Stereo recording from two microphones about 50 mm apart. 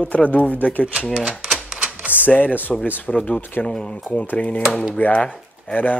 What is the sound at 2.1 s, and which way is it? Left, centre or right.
Speech, left.